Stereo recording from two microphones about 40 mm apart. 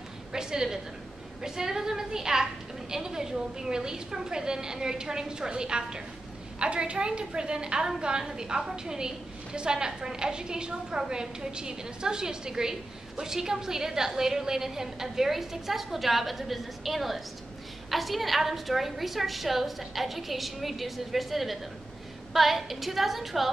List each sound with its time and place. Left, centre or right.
0.3 s a woman's voice: centre